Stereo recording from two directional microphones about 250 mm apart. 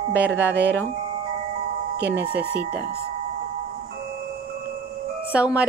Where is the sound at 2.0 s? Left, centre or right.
Right.